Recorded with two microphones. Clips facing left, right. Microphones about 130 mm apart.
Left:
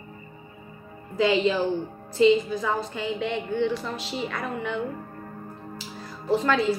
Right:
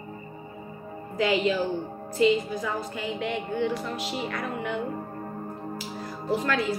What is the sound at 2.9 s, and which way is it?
Speech, 25° left (ahead or behind).